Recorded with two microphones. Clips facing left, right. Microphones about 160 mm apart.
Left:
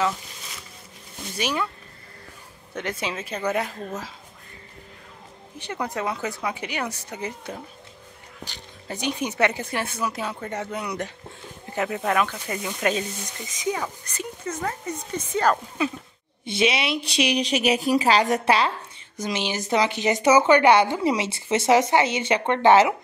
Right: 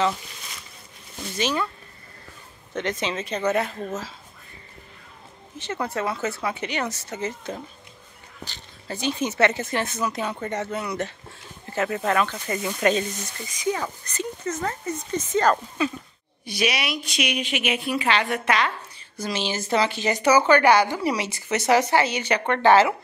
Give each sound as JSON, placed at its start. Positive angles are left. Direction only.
{"t": 1.3, "sound": "speech", "side_deg": 10}
{"t": 2.7, "sound": "speech", "side_deg": 10}
{"t": 5.6, "sound": "speech", "side_deg": 15}
{"t": 16.4, "sound": "a woman's voice", "side_deg": 25}
{"t": 19.1, "sound": "a woman's voice", "side_deg": 15}